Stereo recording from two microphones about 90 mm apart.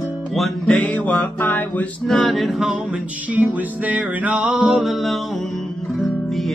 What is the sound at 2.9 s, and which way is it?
Music, 15° right (ahead or behind).